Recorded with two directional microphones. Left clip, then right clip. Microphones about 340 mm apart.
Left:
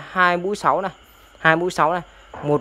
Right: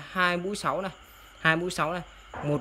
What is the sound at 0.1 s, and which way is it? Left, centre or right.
A man's voice, centre.